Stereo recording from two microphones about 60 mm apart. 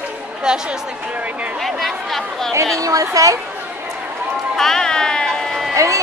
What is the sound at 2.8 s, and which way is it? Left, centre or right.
Speech, right.